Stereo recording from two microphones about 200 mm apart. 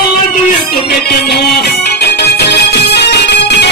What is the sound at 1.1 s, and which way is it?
Music, 50° left (ahead or behind).